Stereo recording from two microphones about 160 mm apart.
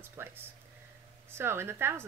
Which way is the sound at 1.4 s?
15° right (ahead or behind).